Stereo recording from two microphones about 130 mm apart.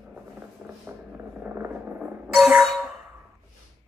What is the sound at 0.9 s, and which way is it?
Music, 15° right (ahead or behind).